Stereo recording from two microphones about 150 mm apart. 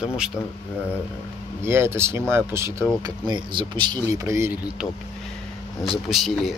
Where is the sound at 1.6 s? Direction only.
15° right (ahead or behind).